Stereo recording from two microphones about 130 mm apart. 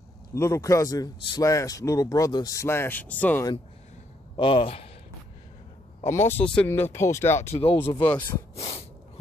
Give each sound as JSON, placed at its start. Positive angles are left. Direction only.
{"t": 0.3, "sound": "a man's voice", "side_deg": 20}
{"t": 4.4, "sound": "speech", "side_deg": 45}
{"t": 6.0, "sound": "a man's voice", "side_deg": 20}
{"t": 6.4, "sound": "a man's voice", "side_deg": 10}
{"t": 7.5, "sound": "speech", "side_deg": 45}
{"t": 8.5, "sound": "snort", "side_deg": 50}